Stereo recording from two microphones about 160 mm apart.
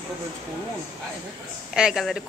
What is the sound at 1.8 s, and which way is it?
Speech, 5° right (ahead or behind).